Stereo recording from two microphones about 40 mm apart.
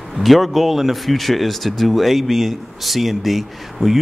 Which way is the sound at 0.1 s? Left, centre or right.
Centre.